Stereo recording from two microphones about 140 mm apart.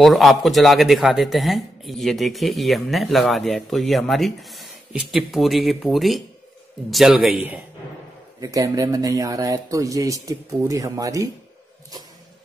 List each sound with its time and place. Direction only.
0.0 s speech: centre (ahead or behind)
8.4 s speech: 25° right (ahead or behind)